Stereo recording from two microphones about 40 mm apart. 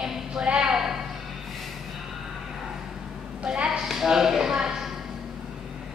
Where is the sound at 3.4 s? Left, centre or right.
Right.